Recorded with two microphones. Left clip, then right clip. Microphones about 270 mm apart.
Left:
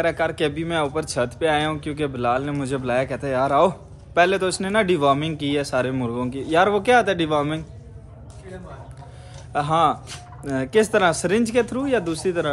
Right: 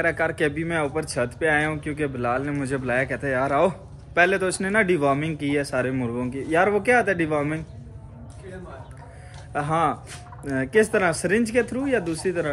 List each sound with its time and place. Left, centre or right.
0.0 s speech: centre
9.5 s speech: centre